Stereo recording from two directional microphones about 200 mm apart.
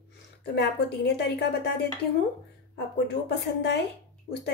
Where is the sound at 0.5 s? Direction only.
55° left (ahead or behind).